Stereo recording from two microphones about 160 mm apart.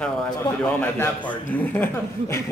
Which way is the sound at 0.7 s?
10° left (ahead or behind).